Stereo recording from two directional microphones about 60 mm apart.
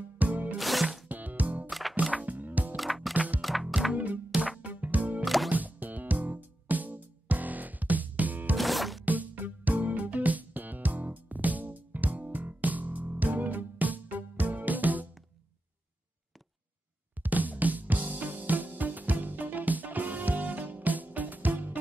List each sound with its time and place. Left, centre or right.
0.2 s music: right
0.6 s music: centre
1.0 s music: right
1.7 s music: centre
2.1 s music: right
2.7 s music: centre
3.9 s music: right
5.2 s music: centre
5.5 s music: right
8.5 s music: centre
9.0 s music: right
17.2 s music: right